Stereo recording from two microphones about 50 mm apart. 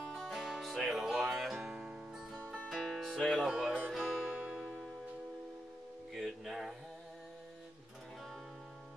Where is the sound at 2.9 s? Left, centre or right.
Centre.